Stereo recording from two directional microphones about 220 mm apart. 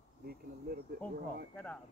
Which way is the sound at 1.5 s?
5° left (ahead or behind).